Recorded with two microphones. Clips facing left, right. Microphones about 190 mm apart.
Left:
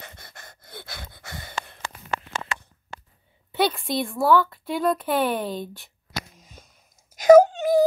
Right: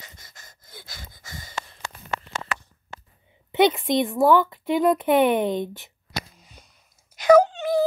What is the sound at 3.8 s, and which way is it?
A woman's voice, 20° right (ahead or behind).